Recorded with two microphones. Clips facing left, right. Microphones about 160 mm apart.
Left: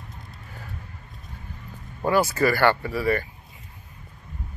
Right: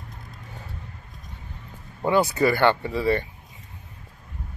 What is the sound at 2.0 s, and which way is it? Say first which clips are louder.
Speech: right 1 dB; 20° right (ahead or behind).